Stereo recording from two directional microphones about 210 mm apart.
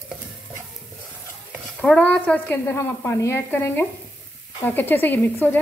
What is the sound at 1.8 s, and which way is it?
A woman's voice, 5° left (ahead or behind).